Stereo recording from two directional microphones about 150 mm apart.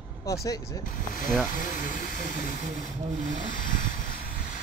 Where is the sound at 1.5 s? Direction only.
65° left (ahead or behind).